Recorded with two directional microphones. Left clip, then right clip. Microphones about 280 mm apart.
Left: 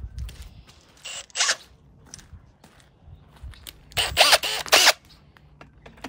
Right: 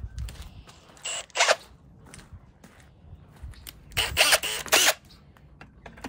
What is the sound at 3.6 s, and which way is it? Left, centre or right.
Zipper, left.